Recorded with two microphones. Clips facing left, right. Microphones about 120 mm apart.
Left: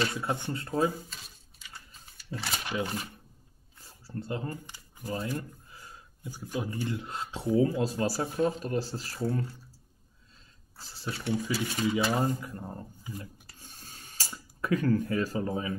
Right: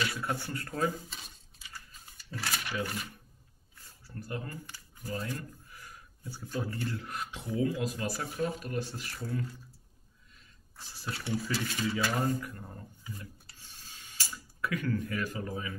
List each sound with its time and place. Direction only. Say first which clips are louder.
0.0 s speech: left 3 dB; 25° left (ahead or behind)
2.3 s speech: left 2 dB; 20° left (ahead or behind)
3.7 s a sound: left 7 dB; 30° left (ahead or behind)
6.2 s speech: left 2 dB; 15° left (ahead or behind); by 9.5 s 30° left (ahead or behind)
10.8 s speech: left 3 dB; 30° left (ahead or behind)
11.5 s speech: left 5 dB; 10° left (ahead or behind); by 13.1 s 30° left (ahead or behind)
13.2 s a sound: left 3 dB; 45° left (ahead or behind)